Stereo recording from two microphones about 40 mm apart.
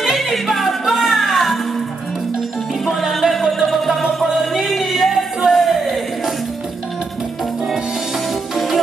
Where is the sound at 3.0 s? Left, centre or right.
Centre.